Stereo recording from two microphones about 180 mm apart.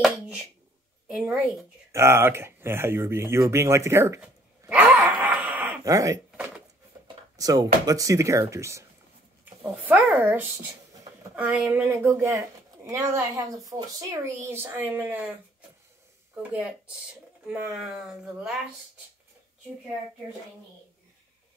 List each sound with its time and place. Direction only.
1.0 s a woman's voice: 5° right (ahead or behind)
1.9 s speech: 15° right (ahead or behind)
7.3 s speech: 20° right (ahead or behind)
17.5 s speech: 5° right (ahead or behind)